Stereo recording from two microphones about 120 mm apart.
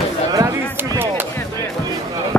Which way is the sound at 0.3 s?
25° right (ahead or behind).